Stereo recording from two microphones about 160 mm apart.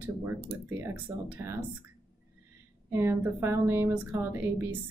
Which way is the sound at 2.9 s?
15° right (ahead or behind).